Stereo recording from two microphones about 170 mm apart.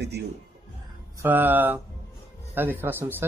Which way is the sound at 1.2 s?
10° right (ahead or behind).